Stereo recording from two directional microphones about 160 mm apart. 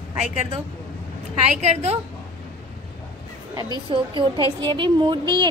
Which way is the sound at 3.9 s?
30° right (ahead or behind).